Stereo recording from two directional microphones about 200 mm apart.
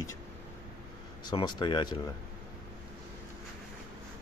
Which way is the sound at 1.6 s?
20° left (ahead or behind).